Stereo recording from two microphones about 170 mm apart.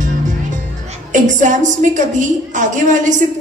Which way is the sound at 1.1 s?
50° right (ahead or behind).